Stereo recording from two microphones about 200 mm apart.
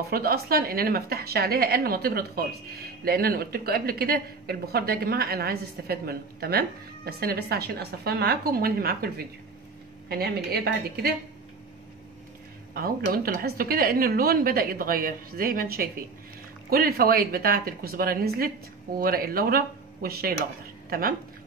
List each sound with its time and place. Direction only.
0.1 s speech: 50° right (ahead or behind)
12.7 s speech: 45° right (ahead or behind)